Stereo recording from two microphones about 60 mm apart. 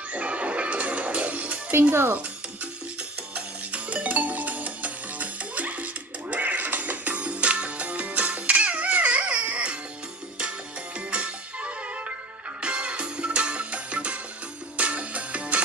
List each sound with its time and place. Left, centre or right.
0.1 s music: right
1.7 s speech: right
3.3 s music: right
11.1 s music: centre